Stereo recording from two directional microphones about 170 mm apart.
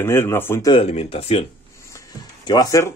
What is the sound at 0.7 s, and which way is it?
Speech, 35° left (ahead or behind).